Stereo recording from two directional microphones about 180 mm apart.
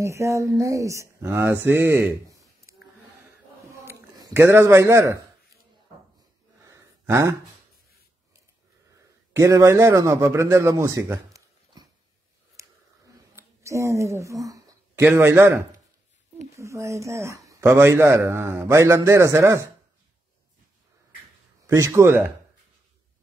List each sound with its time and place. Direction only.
0.0 s speech: 15° right (ahead or behind)
2.7 s a sound: 15° right (ahead or behind)
6.7 s gasp: 15° right (ahead or behind)
9.3 s a man's voice: 15° right (ahead or behind)
12.5 s a sound: 15° right (ahead or behind)
16.5 s speech: 15° right (ahead or behind)
21.6 s speech: 15° right (ahead or behind)